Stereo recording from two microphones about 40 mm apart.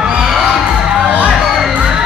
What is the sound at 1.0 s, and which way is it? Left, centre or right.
Music, right.